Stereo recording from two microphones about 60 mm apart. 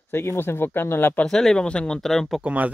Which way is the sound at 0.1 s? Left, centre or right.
Left.